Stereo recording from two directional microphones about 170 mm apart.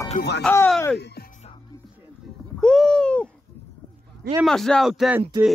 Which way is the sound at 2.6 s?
5° left (ahead or behind).